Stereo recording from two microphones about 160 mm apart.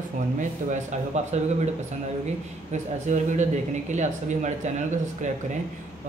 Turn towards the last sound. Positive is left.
turn(degrees=-50)  # may be behind; listen again after turning